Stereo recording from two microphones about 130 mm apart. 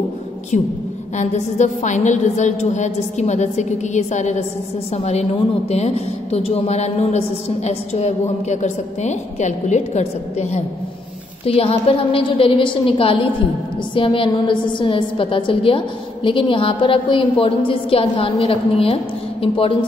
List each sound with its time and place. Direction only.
1.1 s a woman's voice: 65° left (ahead or behind)
11.4 s a woman's voice: 50° left (ahead or behind)